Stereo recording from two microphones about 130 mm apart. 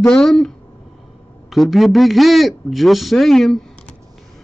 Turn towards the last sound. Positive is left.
turn(degrees=0)  # may be behind; listen again after turning